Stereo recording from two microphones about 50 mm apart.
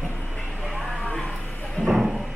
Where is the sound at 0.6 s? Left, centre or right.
Centre.